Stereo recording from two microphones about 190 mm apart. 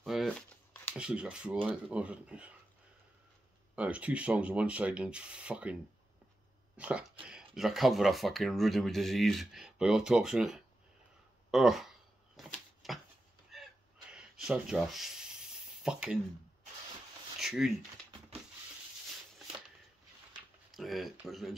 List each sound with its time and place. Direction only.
0.0 s shuffling cards: centre (ahead or behind)
0.9 s speech: 5° right (ahead or behind)
3.7 s speech: 5° right (ahead or behind)
6.8 s speech: 5° right (ahead or behind)
12.4 s typewriter: centre (ahead or behind)
13.5 s a sound: centre (ahead or behind)
14.1 s rub: 5° right (ahead or behind)
17.4 s speech: 5° right (ahead or behind)
20.7 s speech: centre (ahead or behind)